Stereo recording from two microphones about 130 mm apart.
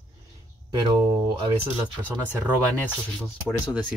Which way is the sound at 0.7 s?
35° right (ahead or behind).